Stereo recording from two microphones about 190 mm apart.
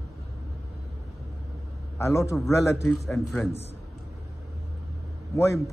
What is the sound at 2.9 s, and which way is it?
Speech, 5° left (ahead or behind).